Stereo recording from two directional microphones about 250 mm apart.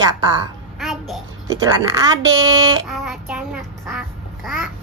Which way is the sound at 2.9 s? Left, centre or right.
Centre.